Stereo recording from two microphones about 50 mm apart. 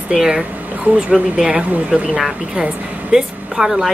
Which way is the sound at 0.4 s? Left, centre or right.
Right.